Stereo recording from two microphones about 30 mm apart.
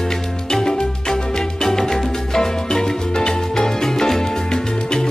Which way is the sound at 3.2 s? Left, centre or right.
Left.